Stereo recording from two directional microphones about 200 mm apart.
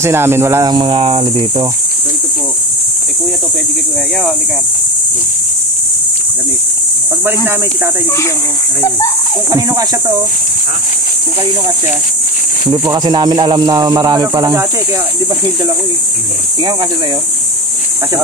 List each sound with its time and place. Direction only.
0.0 s speech: 10° right (ahead or behind)
7.2 s speech: 10° right (ahead or behind)
9.5 s speech: 15° right (ahead or behind)
12.8 s speech: 20° right (ahead or behind)